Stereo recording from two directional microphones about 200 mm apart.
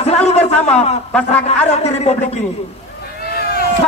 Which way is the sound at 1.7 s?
35° left (ahead or behind).